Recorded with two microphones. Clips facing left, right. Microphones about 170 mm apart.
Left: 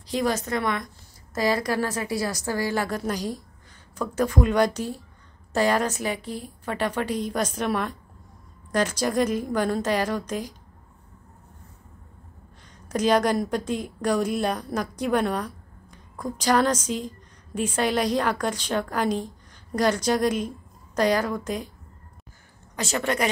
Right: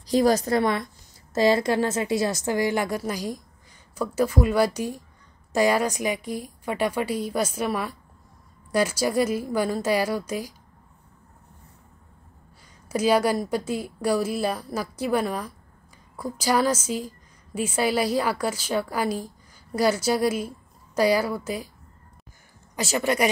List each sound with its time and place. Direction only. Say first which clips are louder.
0.0 s a woman's voice: right 5 dB; 35° right (ahead or behind); by 10.5 s 10° right (ahead or behind)
12.8 s a woman's voice: even; 5° right (ahead or behind)
22.8 s a woman's voice: right 2 dB; 5° right (ahead or behind)